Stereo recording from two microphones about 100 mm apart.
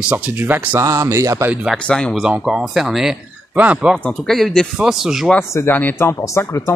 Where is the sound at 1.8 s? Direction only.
10° left (ahead or behind).